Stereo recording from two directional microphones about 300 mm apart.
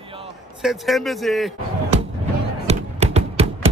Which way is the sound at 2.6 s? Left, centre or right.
Right.